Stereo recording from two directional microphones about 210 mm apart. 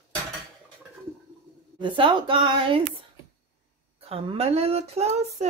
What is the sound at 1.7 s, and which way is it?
Speech, 25° right (ahead or behind).